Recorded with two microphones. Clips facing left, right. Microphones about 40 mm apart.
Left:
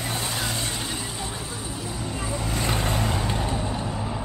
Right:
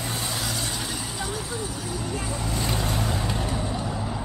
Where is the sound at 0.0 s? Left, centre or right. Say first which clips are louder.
Left 1 dB; centre.